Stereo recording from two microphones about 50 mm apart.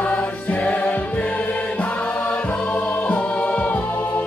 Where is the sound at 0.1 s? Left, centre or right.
Left.